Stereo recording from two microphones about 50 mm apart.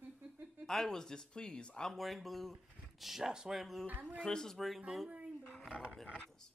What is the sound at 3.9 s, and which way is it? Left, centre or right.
Speech, right.